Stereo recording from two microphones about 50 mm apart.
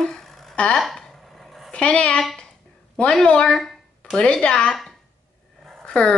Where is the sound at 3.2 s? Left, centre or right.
Centre.